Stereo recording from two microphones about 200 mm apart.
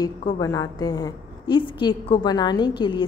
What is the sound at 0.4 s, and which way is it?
A woman's voice, 15° left (ahead or behind).